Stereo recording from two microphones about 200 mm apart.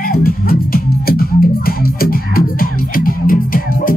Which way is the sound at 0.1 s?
45° left (ahead or behind).